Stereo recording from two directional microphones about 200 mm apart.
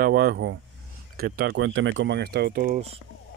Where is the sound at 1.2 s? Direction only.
50° right (ahead or behind).